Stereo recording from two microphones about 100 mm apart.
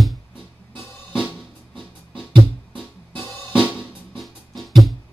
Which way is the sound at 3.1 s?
15° left (ahead or behind).